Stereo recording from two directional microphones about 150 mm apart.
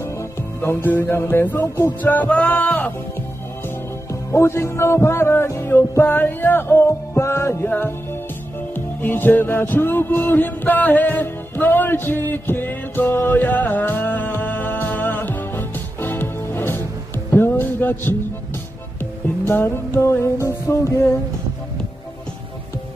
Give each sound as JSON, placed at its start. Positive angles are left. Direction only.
{"t": 0.0, "sound": "music", "side_deg": 20}
{"t": 19.4, "sound": "music", "side_deg": 15}